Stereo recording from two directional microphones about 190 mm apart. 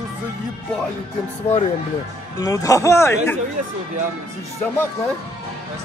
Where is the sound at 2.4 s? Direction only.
15° left (ahead or behind).